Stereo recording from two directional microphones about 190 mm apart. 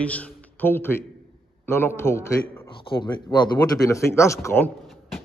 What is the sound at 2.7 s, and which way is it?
A man's voice, 25° left (ahead or behind).